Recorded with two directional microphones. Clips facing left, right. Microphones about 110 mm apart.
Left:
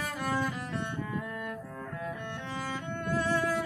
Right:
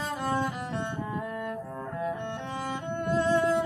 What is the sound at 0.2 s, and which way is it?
Cello, 25° right (ahead or behind).